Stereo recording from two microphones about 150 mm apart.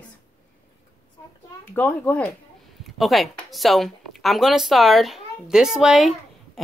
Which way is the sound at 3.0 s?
Centre (ahead or behind).